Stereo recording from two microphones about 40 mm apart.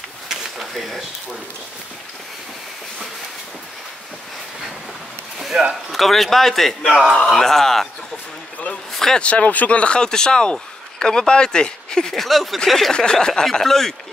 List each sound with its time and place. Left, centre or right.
0.3 s a sound: centre
5.5 s speech: right
5.9 s a man's voice: centre
8.9 s a sound: centre
9.2 s speech: left; by 12.2 s centre
12.2 s a man's voice: centre
12.9 s speech: centre